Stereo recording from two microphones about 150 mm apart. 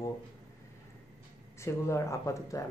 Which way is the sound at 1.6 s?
20° left (ahead or behind).